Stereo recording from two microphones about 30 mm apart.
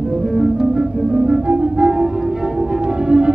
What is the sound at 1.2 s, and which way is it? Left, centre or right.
Organ, right.